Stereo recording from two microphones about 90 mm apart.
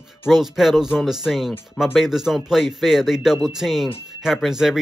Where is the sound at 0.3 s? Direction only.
5° right (ahead or behind).